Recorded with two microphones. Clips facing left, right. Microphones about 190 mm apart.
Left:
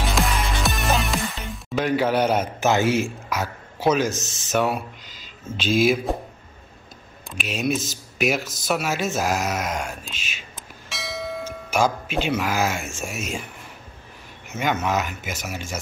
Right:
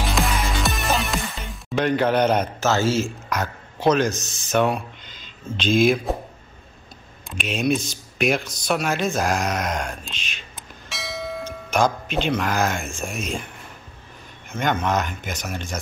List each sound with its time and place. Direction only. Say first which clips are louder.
0.1 s music: right 1 dB; centre (ahead or behind)
4.1 s speech: left 1 dB; 25° left (ahead or behind)
4.5 s speech: right 2 dB; 5° left (ahead or behind)
7.2 s speech: right 3 dB; centre (ahead or behind)
10.9 s church bell: even; centre (ahead or behind)
14.5 s speech: right 1 dB; 5° left (ahead or behind)